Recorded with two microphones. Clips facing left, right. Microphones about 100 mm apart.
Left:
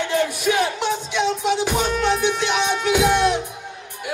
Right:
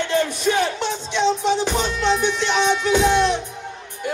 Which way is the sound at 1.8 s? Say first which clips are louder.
Even; 50° left (ahead or behind).